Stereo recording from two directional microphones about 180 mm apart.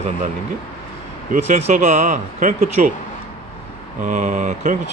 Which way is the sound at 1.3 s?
45° right (ahead or behind).